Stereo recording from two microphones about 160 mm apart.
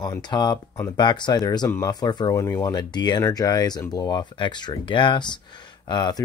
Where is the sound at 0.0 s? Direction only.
25° left (ahead or behind).